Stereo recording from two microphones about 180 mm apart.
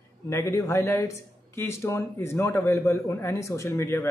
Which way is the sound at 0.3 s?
15° left (ahead or behind).